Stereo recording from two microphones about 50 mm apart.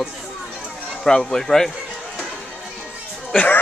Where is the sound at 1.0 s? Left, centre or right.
Centre.